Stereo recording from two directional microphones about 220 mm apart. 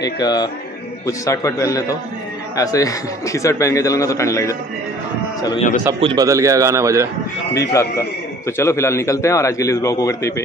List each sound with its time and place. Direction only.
0.0 s a man's voice: 15° left (ahead or behind)
5.9 s a man's voice: 25° right (ahead or behind)
6.2 s a man's voice: 15° right (ahead or behind)
7.7 s a man's voice: 10° left (ahead or behind)